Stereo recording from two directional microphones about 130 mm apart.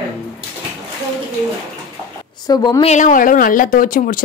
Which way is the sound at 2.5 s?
35° left (ahead or behind).